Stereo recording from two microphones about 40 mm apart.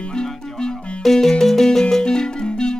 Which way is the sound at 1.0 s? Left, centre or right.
Centre.